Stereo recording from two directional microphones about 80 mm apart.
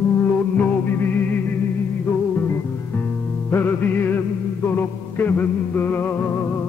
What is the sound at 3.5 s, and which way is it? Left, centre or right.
Music, left.